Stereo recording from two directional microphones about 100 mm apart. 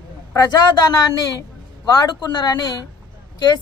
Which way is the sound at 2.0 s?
40° left (ahead or behind).